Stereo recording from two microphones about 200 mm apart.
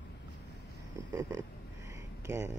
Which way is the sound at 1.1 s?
15° right (ahead or behind).